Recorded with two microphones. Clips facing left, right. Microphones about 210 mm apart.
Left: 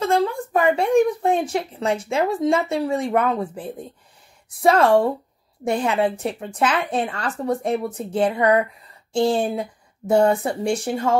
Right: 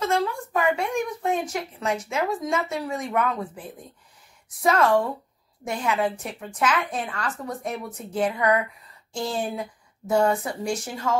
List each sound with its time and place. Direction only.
0.0 s a woman's voice: 30° left (ahead or behind)